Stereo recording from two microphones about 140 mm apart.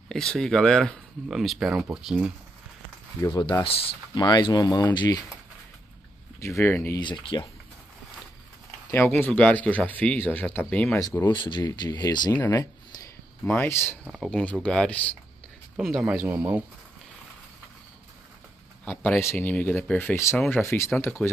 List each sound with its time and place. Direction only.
0.1 s speech: 5° left (ahead or behind)
3.2 s speech: 30° left (ahead or behind)
6.4 s speech: 15° left (ahead or behind)
7.0 s speech: 35° left (ahead or behind)
8.9 s speech: 15° left (ahead or behind)
11.0 s speech: 25° left (ahead or behind)
11.3 s speech: 35° left (ahead or behind)
12.4 s a sound: 20° left (ahead or behind)
13.5 s speech: 15° left (ahead or behind)
14.0 s speech: centre (ahead or behind)
14.4 s speech: 10° left (ahead or behind)
15.8 s speech: 5° right (ahead or behind)
18.9 s speech: 15° left (ahead or behind)